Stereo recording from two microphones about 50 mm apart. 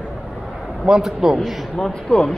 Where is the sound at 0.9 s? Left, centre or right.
Centre.